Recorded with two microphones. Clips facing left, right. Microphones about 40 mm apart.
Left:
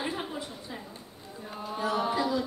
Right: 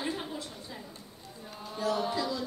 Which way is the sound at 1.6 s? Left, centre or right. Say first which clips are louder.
Left 2 dB; centre.